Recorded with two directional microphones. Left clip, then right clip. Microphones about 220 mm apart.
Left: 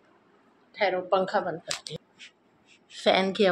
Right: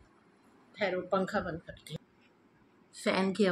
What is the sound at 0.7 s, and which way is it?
Speech, 15° right (ahead or behind).